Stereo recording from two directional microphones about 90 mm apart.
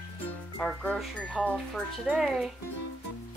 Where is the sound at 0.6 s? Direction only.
5° left (ahead or behind).